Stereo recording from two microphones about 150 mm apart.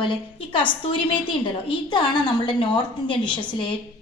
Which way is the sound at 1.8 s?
30° left (ahead or behind).